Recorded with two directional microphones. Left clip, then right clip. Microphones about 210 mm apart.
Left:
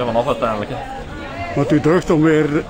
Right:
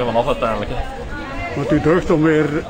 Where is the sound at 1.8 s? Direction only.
35° left (ahead or behind).